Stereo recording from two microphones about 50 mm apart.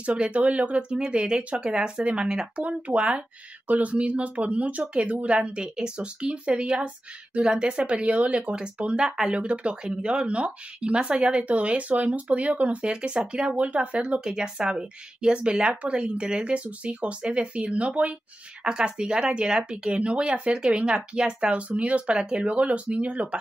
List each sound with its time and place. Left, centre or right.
0.0 s speech: right
9.0 s speech: centre
9.3 s speech: right